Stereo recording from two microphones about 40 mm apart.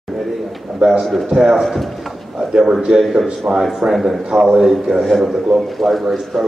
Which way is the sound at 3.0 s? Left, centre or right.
Centre.